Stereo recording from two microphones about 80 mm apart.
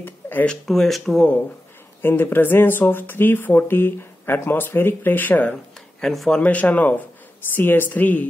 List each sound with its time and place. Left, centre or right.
0.0 s speech: left
0.7 s speech: centre
2.0 s speech: left
5.5 s speech: centre
6.4 s speech: centre